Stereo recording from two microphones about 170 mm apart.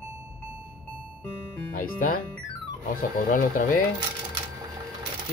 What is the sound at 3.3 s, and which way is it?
Speech, 55° left (ahead or behind).